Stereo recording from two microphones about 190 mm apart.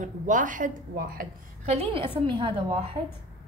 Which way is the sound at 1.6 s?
30° right (ahead or behind).